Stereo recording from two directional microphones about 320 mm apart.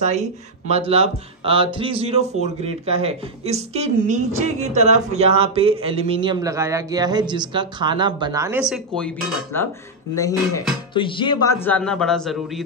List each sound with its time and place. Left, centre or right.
0.0 s speech: right; by 9.7 s centre
10.1 s dishes: centre
10.9 s speech: centre